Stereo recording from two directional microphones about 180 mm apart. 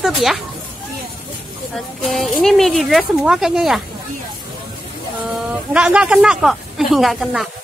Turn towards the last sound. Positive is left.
turn(degrees=0)  # may be behind; listen again after turning